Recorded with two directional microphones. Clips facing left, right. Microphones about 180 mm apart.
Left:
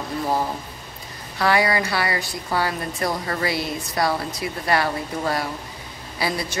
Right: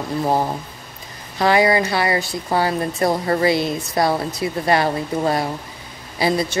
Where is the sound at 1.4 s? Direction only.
20° right (ahead or behind).